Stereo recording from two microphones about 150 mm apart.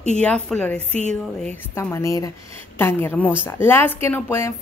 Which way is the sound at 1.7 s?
20° left (ahead or behind).